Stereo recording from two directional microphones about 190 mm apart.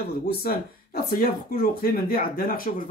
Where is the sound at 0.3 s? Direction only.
55° left (ahead or behind).